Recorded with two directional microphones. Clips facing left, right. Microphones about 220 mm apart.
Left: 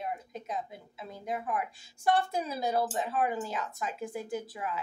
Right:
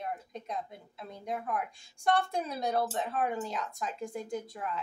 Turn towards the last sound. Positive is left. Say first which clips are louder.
# left 1 dB
turn(degrees=5)  # may be behind; listen again after turning